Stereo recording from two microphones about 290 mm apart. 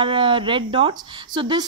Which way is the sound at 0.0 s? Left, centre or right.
Centre.